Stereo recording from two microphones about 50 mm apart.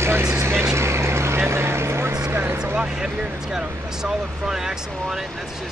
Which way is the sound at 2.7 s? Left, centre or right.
Centre.